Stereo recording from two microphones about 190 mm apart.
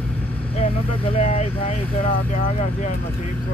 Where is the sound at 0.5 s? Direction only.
35° left (ahead or behind).